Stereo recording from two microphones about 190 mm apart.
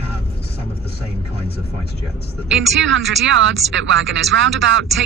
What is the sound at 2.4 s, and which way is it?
Speech, 80° right.